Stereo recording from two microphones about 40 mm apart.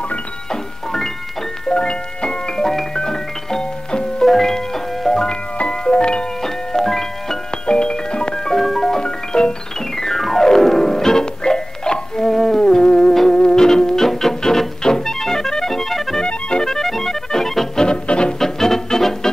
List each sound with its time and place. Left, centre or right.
0.5 s music: centre
1.7 s music: left
5.3 s music: left
6.4 s music: centre
7.6 s music: left
8.5 s music: centre
16.2 s music: left
16.6 s music: centre
17.8 s music: left
18.4 s music: centre